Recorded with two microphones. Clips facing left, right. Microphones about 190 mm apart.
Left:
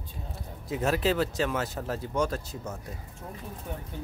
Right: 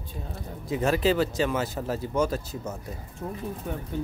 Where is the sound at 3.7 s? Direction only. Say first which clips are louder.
Right 3 dB; 70° right (ahead or behind).